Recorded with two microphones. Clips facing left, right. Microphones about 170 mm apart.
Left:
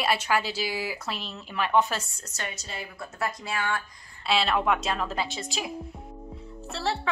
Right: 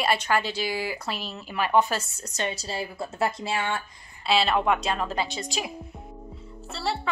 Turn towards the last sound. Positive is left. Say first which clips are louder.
# even
turn(degrees=0)  # may be behind; listen again after turning